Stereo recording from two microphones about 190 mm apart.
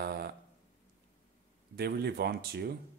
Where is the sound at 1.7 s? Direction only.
55° right (ahead or behind).